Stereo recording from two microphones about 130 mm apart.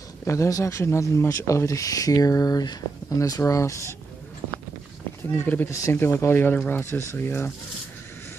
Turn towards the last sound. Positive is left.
turn(degrees=15)  # may be behind; listen again after turning